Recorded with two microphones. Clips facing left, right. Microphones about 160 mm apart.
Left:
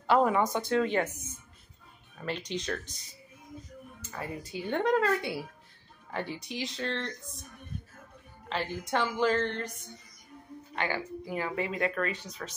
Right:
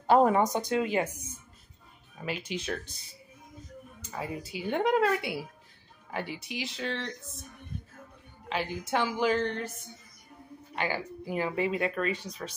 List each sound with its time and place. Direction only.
0.0 s speech: 45° right (ahead or behind)
0.4 s speech: 15° right (ahead or behind)
4.1 s a woman's voice: 10° right (ahead or behind)
8.5 s a woman's voice: 5° right (ahead or behind)
10.8 s speech: 15° right (ahead or behind)
12.3 s speech: 10° right (ahead or behind)